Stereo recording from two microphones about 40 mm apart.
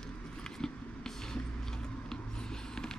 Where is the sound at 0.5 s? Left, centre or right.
Centre.